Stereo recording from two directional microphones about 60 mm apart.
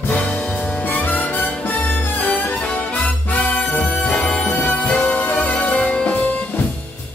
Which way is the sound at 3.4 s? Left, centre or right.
Left.